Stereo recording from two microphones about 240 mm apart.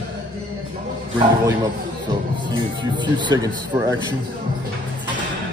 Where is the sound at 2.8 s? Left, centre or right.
Centre.